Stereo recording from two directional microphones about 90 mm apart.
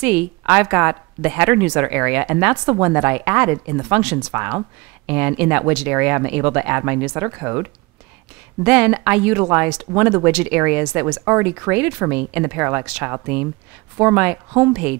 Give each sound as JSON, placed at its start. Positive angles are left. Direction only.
{"t": 0.0, "sound": "speech", "side_deg": -15}
{"t": 4.3, "sound": "speech", "side_deg": -20}